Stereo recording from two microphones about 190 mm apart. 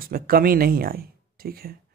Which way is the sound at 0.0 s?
50° right (ahead or behind).